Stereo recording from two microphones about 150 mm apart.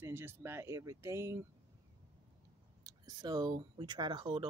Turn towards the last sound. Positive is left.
turn(degrees=-35)  # may be behind; listen again after turning